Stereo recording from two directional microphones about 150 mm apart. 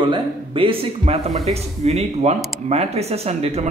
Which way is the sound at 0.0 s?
35° right (ahead or behind).